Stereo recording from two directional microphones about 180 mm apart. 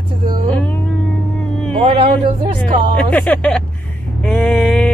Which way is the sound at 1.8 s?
30° right (ahead or behind).